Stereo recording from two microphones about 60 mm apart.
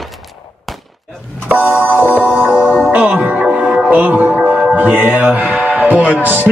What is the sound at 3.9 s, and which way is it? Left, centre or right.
Music, right.